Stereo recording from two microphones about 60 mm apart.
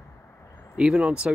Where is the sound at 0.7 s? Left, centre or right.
Centre.